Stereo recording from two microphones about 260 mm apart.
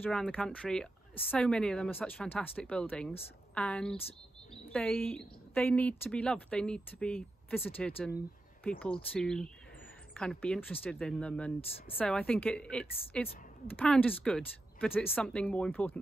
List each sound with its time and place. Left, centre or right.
0.0 s a woman's voice: centre